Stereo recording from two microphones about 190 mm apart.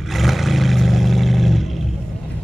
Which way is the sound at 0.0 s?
Centre (ahead or behind).